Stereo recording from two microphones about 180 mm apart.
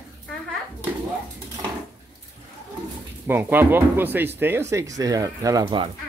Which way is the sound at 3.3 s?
10° right (ahead or behind).